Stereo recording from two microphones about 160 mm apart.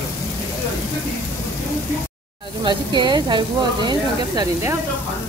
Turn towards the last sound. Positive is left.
turn(degrees=-25)  # may be behind; listen again after turning